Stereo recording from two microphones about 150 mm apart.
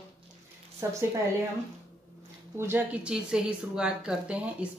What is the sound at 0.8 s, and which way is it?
Speech, 20° right (ahead or behind).